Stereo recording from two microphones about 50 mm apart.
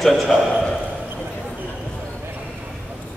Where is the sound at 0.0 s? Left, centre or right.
Centre.